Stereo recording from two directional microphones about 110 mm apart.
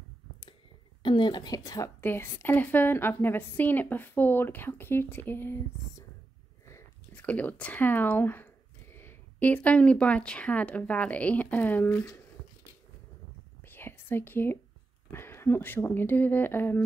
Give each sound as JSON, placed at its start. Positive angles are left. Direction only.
{"t": 1.0, "sound": "a woman's voice", "side_deg": 45}
{"t": 2.0, "sound": "a woman's voice", "side_deg": 20}
{"t": 6.6, "sound": "biting", "side_deg": 25}
{"t": 7.2, "sound": "speech", "side_deg": 15}
{"t": 13.6, "sound": "whispering", "side_deg": 20}
{"t": 15.0, "sound": "a woman's voice", "side_deg": 20}